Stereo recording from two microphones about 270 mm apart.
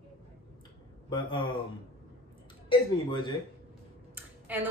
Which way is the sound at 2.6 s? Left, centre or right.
Centre.